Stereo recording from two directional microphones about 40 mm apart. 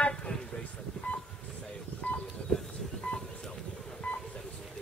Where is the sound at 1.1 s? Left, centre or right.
Left.